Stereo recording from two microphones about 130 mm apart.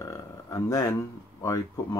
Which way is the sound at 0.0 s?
25° left (ahead or behind).